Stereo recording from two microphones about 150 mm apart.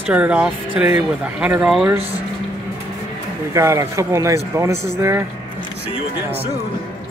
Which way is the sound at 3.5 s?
20° right (ahead or behind).